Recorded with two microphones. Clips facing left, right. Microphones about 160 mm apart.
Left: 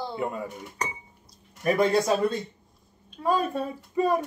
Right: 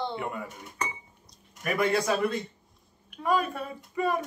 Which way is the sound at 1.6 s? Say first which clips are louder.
Left 4 dB; 30° left (ahead or behind).